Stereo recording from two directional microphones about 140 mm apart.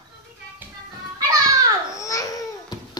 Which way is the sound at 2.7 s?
30° left (ahead or behind).